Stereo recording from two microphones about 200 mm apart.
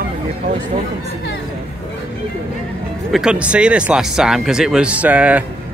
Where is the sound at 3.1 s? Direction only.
5° right (ahead or behind).